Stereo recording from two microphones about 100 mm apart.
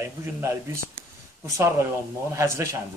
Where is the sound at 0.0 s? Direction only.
30° right (ahead or behind).